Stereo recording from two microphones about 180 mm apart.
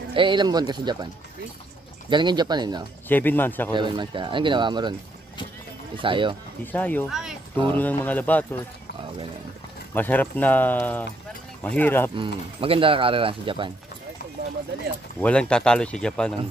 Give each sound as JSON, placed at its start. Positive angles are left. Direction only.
{"t": 0.1, "sound": "speech", "side_deg": -25}
{"t": 2.0, "sound": "speech", "side_deg": -25}
{"t": 3.1, "sound": "speech", "side_deg": 10}
{"t": 3.7, "sound": "speech", "side_deg": -25}
{"t": 5.9, "sound": "speech", "side_deg": -25}
{"t": 6.6, "sound": "speech", "side_deg": 10}
{"t": 7.1, "sound": "speech", "side_deg": 0}
{"t": 7.7, "sound": "speech", "side_deg": 10}
{"t": 9.9, "sound": "speech", "side_deg": 10}
{"t": 12.2, "sound": "speech", "side_deg": -30}
{"t": 15.1, "sound": "speech", "side_deg": 5}